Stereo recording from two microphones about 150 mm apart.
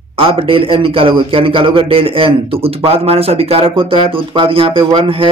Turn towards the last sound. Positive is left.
turn(degrees=-35)  # may be behind; listen again after turning